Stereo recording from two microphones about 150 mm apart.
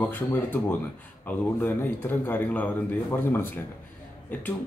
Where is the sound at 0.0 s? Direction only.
15° left (ahead or behind).